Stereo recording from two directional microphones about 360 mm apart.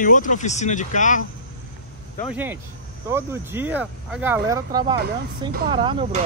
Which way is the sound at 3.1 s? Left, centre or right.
Centre.